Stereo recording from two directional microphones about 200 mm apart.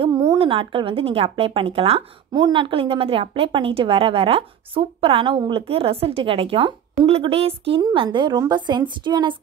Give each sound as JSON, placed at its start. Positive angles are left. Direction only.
{"t": 0.0, "sound": "a woman's voice", "side_deg": -20}